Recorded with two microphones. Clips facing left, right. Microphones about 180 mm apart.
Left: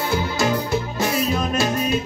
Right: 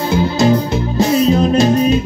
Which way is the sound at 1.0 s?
30° right (ahead or behind).